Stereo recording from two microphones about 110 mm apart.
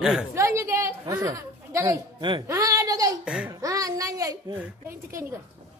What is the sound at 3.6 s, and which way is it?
Speech, 30° right (ahead or behind).